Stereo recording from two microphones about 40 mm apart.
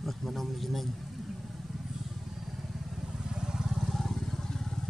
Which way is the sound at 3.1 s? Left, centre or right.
Centre.